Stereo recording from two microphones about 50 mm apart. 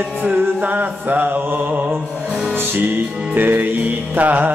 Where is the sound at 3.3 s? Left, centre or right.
Right.